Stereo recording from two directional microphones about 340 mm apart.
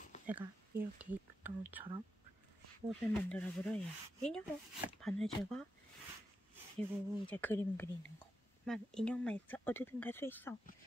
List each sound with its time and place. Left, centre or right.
0.3 s speech: centre
6.8 s speech: centre